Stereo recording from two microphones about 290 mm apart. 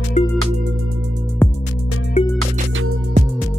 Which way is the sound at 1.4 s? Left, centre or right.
Centre.